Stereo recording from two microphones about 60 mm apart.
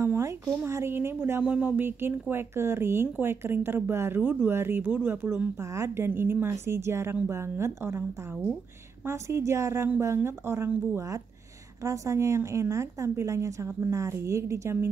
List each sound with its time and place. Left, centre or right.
0.0 s a sound: right
0.7 s speech: right
1.4 s speech: centre
1.8 s speech: right
5.6 s a woman's voice: right
6.0 s speech: right
11.8 s a woman's voice: right